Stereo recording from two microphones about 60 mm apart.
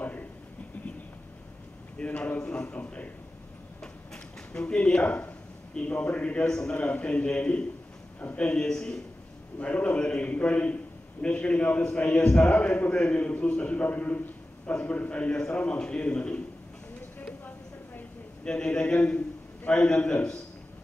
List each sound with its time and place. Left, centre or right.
2.0 s a man's voice: left
4.5 s a man's voice: centre
9.6 s a man's voice: left
17.2 s a sound: left
18.4 s a man's voice: centre